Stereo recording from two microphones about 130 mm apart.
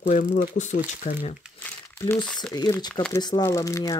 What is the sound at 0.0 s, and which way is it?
Speech, 70° left (ahead or behind).